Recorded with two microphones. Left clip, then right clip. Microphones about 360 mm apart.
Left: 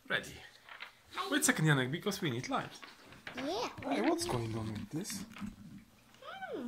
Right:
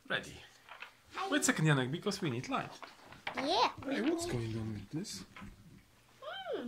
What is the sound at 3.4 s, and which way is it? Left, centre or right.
Speech, right.